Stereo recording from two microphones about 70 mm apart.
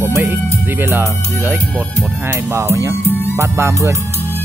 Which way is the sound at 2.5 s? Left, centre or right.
Right.